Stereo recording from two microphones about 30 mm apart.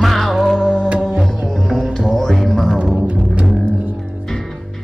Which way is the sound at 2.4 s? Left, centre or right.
Centre.